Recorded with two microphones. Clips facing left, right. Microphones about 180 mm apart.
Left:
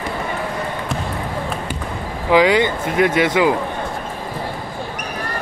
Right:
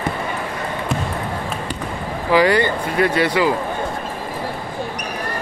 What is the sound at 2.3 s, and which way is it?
Speech, 20° left (ahead or behind).